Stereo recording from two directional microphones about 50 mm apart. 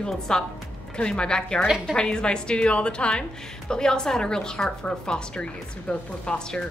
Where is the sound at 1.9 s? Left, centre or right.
Centre.